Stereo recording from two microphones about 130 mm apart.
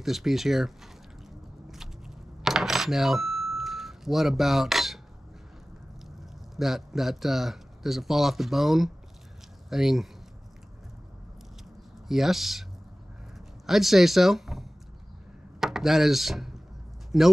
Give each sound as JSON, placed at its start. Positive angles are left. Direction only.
{"t": 0.0, "sound": "speech", "side_deg": 0}
{"t": 1.7, "sound": "telephone", "side_deg": -5}
{"t": 6.5, "sound": "speech", "side_deg": 0}
{"t": 12.1, "sound": "speech", "side_deg": 0}
{"t": 13.7, "sound": "speech", "side_deg": 0}